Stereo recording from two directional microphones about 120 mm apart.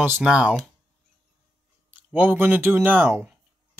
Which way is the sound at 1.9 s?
15° right (ahead or behind).